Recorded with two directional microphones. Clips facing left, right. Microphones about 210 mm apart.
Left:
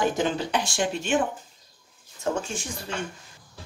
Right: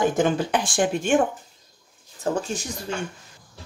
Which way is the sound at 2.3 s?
35° right (ahead or behind).